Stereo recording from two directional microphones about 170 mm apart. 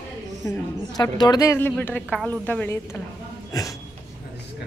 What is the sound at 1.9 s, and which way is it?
Speech, 5° right (ahead or behind).